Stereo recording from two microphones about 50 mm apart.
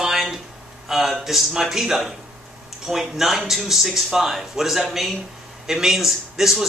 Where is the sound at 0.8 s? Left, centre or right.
Centre.